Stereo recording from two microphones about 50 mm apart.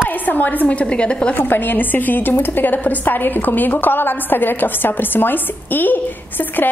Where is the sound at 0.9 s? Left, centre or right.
Centre.